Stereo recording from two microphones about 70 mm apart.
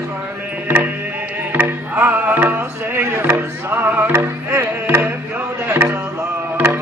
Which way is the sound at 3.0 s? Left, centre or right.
Right.